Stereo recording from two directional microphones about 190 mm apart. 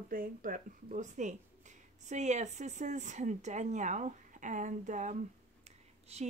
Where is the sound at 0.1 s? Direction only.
45° right (ahead or behind).